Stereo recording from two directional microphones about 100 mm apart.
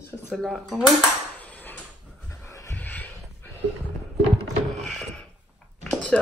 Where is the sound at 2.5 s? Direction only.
30° left (ahead or behind).